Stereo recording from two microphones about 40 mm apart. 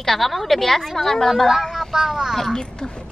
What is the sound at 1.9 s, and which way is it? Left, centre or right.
Speech, centre.